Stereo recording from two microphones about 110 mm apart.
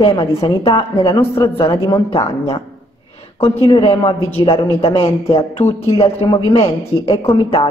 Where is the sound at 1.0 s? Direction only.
35° left (ahead or behind).